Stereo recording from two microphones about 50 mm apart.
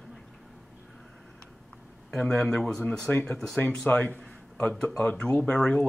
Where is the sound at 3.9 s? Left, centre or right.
Left.